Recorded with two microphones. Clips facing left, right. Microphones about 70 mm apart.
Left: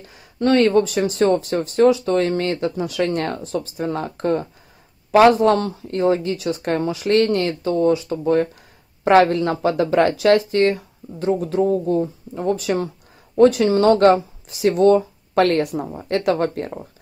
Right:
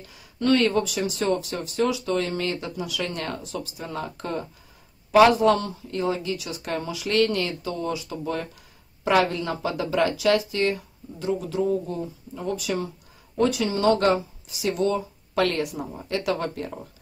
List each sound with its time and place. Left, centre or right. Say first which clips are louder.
0.0 s speech: left 5 dB; left
15.8 s speech: left 5 dB; left
16.1 s speech: left 7 dB; left